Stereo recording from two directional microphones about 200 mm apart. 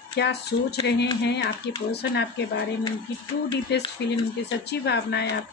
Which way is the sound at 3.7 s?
55° left (ahead or behind).